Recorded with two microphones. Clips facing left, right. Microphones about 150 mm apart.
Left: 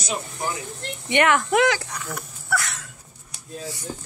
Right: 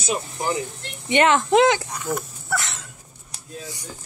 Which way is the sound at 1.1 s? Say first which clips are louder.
Right 2 dB; 25° right (ahead or behind).